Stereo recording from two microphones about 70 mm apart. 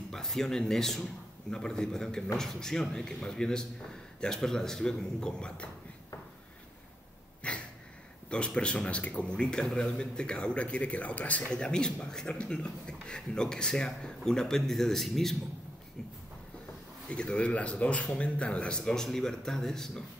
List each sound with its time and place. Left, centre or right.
0.1 s a man's voice: centre
7.4 s a sound: centre
8.5 s a man's voice: centre
17.1 s a man's voice: centre